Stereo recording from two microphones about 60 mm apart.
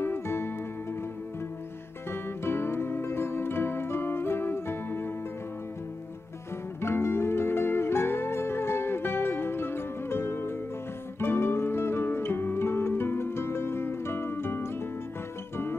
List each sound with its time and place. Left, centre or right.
0.0 s music: left
2.0 s music: left
6.8 s music: left